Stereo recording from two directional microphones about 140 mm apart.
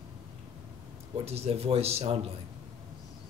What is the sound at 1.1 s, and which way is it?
Speech, 45° right (ahead or behind).